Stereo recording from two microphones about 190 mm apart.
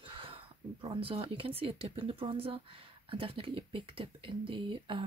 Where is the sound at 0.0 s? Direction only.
30° right (ahead or behind).